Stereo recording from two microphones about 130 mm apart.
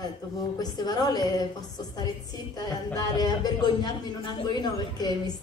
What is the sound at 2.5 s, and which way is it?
A woman's voice, 30° left (ahead or behind).